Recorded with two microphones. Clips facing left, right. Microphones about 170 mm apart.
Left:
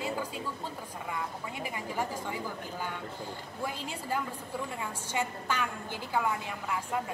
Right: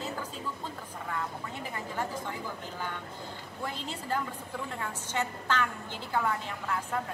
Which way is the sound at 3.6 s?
10° left (ahead or behind).